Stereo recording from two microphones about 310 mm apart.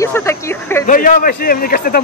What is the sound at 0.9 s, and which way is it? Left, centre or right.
A man's voice, left.